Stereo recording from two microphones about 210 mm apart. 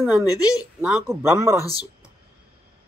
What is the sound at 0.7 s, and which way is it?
Speech, 5° right (ahead or behind).